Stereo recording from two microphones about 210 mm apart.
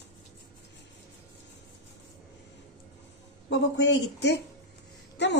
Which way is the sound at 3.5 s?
55° left (ahead or behind).